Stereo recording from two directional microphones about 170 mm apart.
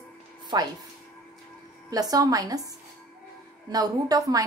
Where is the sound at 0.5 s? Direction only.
25° right (ahead or behind).